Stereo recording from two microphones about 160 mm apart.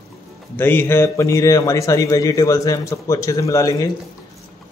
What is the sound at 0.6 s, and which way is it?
A man's voice, 15° left (ahead or behind).